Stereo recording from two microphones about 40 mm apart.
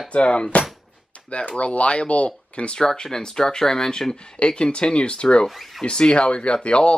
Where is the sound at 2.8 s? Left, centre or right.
Centre.